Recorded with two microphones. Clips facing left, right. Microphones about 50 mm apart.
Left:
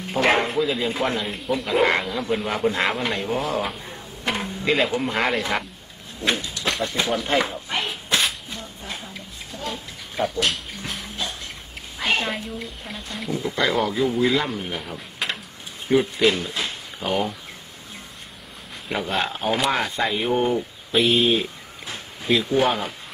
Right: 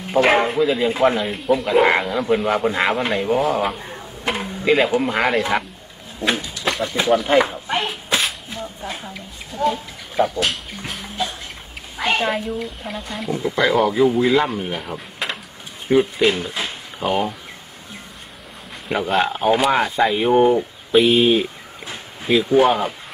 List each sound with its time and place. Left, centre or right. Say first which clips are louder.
0.1 s speech: right 4 dB; centre
3.7 s a sound: right 4 dB; right
4.2 s speech: right 2 dB; centre
6.2 s a sound: right 3 dB; centre
8.8 s a sound: right 3 dB; centre
9.5 s speech: right 12 dB; right
10.4 s bathtub: right 2 dB; centre
12.1 s speech: right 4 dB; centre
16.4 s drawer open or close: right 2 dB; centre
18.9 s speech: right 6 dB; centre